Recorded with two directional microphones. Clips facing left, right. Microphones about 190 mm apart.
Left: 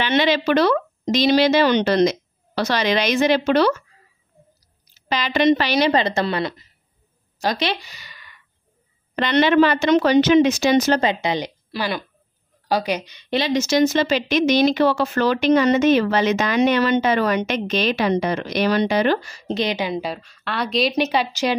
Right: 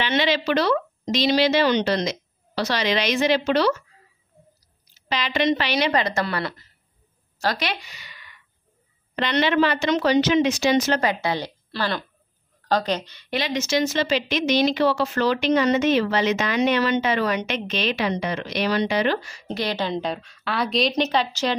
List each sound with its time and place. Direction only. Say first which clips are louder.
0.0 s speech: left 3 dB; 50° left (ahead or behind)
5.1 s a woman's voice: left 5 dB; 45° left (ahead or behind)
11.0 s speech: left 3 dB; 20° left (ahead or behind)
13.3 s speech: left 4 dB; 35° left (ahead or behind)
19.5 s a woman's voice: left 3 dB; 20° left (ahead or behind)